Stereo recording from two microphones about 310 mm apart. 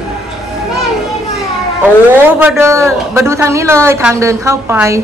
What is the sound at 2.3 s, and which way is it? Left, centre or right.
A woman's voice, centre.